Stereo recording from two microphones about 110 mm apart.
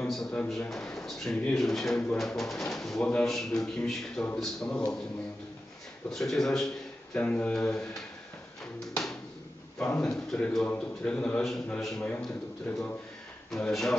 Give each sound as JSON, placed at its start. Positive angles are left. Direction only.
{"t": 0.0, "sound": "speech", "side_deg": 5}
{"t": 6.0, "sound": "speech", "side_deg": 5}
{"t": 7.2, "sound": "a man's voice", "side_deg": 15}
{"t": 9.8, "sound": "a man's voice", "side_deg": 5}
{"t": 12.7, "sound": "a man's voice", "side_deg": 20}
{"t": 13.5, "sound": "speech", "side_deg": 5}